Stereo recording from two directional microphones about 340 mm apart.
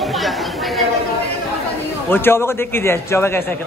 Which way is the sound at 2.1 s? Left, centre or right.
Centre.